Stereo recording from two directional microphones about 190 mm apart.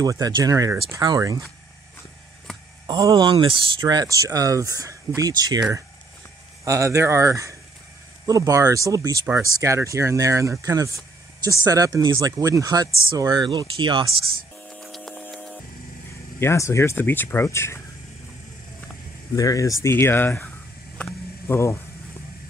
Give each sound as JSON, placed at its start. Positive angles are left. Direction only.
{"t": 0.0, "sound": "speech", "side_deg": -20}
{"t": 2.9, "sound": "speech", "side_deg": -20}
{"t": 14.7, "sound": "hum", "side_deg": 0}
{"t": 16.3, "sound": "speech", "side_deg": 15}
{"t": 19.3, "sound": "speech", "side_deg": 20}
{"t": 21.0, "sound": "a sound", "side_deg": 15}